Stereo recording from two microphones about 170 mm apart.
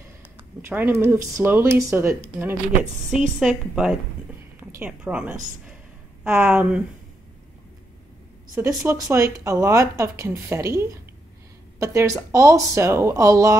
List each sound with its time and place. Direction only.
0.6 s a woman's voice: 15° right (ahead or behind)
8.5 s speech: 15° right (ahead or behind)